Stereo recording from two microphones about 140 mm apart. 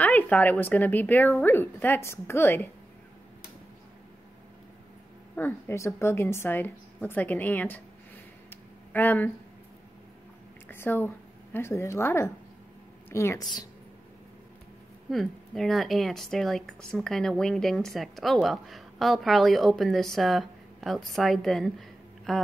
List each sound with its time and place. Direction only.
0.0 s a woman's voice: 10° left (ahead or behind)
5.3 s a woman's voice: 15° left (ahead or behind)
8.5 s a sound: 15° left (ahead or behind)
10.7 s a woman's voice: 15° left (ahead or behind)
15.0 s speech: centre (ahead or behind)